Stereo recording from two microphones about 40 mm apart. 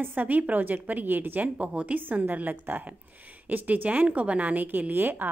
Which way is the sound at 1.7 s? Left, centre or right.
Right.